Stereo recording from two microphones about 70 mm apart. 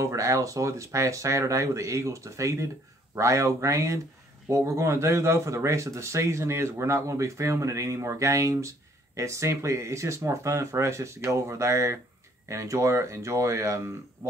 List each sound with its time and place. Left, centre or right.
0.0 s speech: right